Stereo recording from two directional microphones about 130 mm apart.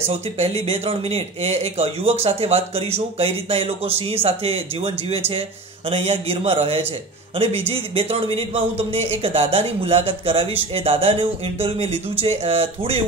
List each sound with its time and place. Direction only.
0.4 s speech: 55° right (ahead or behind)